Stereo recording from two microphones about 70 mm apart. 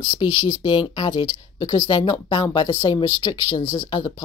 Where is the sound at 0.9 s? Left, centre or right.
Left.